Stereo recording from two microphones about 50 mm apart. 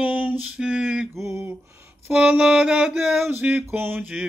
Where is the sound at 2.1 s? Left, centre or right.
Right.